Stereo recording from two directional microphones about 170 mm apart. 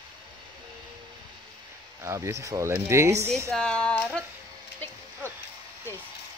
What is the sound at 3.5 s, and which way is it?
Female singing, 5° left (ahead or behind).